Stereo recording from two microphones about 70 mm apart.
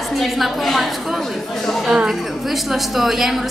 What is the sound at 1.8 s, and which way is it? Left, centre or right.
A woman's voice, centre.